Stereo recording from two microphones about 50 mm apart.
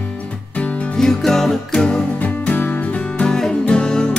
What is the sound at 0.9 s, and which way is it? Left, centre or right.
Music, centre.